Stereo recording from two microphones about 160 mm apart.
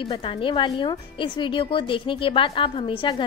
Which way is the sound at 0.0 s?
35° left (ahead or behind).